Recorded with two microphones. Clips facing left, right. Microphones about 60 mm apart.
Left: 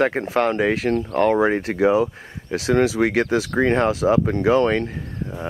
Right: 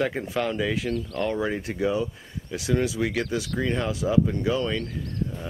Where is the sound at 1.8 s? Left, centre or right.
Left.